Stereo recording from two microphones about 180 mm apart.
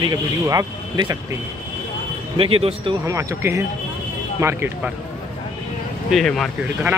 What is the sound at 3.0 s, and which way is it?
A man's voice, 15° right (ahead or behind).